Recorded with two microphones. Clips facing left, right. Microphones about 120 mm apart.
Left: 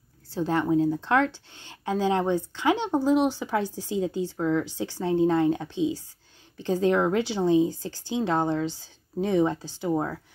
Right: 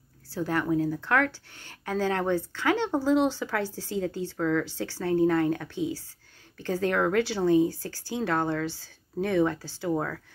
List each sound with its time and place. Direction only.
0.3 s speech: 25° left (ahead or behind)